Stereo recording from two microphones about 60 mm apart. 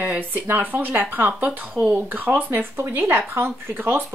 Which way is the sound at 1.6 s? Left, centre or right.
Right.